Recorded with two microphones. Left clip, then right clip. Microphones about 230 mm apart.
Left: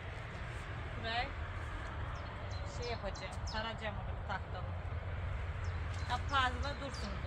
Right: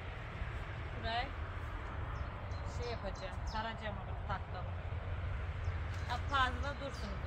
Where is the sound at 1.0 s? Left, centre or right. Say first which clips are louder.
Even; centre.